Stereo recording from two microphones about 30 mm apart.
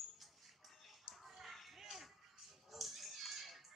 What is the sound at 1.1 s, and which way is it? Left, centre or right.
Music, centre.